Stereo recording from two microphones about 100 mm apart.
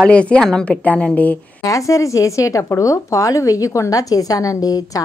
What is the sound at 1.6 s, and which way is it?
A woman's voice, 35° left (ahead or behind).